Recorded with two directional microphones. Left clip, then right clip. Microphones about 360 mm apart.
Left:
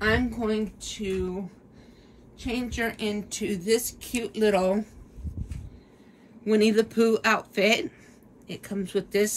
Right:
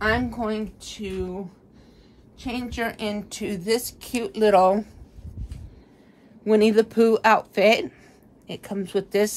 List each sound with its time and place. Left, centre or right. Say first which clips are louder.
0.0 s a woman's voice: right 2 dB; centre
2.4 s a woman's voice: right 1 dB; centre
6.4 s a woman's voice: right 4 dB; centre